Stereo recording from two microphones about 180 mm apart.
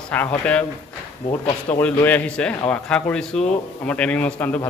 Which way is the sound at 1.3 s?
25° left (ahead or behind).